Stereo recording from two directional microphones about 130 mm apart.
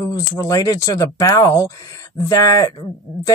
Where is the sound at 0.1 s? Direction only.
25° left (ahead or behind).